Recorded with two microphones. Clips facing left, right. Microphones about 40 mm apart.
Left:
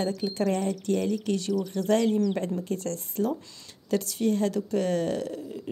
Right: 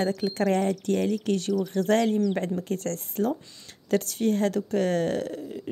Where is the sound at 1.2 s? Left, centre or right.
Right.